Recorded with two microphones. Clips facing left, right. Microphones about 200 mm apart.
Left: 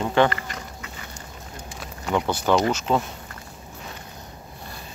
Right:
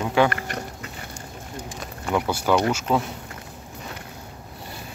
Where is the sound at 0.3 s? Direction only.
60° right (ahead or behind).